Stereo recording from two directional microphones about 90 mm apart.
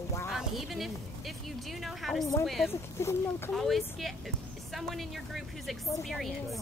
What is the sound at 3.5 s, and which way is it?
Speech, centre (ahead or behind).